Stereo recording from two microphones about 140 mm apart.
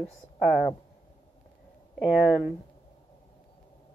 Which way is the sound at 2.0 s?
Centre (ahead or behind).